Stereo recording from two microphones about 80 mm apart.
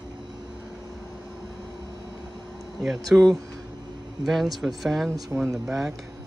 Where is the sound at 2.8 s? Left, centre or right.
Centre.